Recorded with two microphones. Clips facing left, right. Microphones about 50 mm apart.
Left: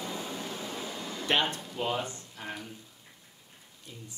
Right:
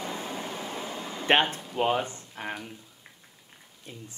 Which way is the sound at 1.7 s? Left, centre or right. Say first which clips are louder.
Right 6 dB; right.